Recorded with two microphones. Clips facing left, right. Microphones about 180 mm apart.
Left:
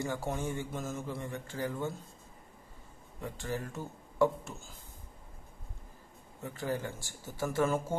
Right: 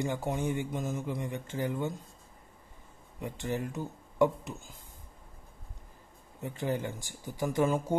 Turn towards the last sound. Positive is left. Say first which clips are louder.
# right 2 dB
turn(degrees=-15)  # may be behind; listen again after turning